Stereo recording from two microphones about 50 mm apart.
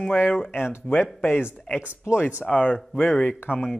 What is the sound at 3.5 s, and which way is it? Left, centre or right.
Speech, right.